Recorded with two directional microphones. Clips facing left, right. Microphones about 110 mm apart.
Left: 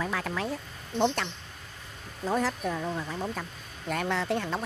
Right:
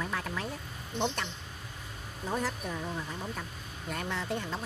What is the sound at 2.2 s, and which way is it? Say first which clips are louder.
Speech: left 5 dB; 90° left.